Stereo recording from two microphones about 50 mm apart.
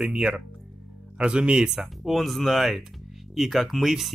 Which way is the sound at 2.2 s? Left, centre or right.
Centre.